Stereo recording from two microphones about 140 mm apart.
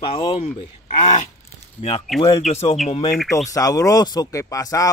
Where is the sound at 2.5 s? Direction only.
50° left (ahead or behind).